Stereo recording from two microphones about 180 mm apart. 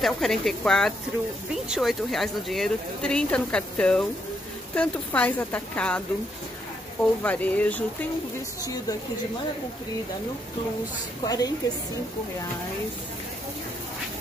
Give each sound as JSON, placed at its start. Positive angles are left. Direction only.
{"t": 0.0, "sound": "speech", "side_deg": 0}
{"t": 7.2, "sound": "speech", "side_deg": 10}
{"t": 11.2, "sound": "a woman's voice", "side_deg": 20}